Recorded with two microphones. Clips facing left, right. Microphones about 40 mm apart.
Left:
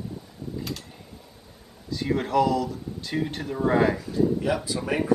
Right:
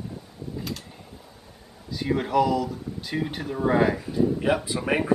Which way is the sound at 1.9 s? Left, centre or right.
Centre.